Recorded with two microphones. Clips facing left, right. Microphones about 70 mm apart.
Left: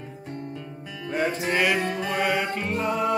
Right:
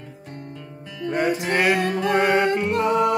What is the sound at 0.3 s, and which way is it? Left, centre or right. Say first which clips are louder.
Music: left 2 dB; centre.